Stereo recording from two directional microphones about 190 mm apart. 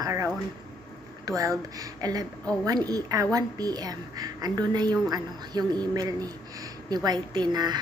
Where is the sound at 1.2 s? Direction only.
15° right (ahead or behind).